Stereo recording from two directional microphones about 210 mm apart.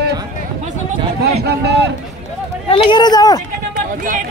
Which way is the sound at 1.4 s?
50° right (ahead or behind).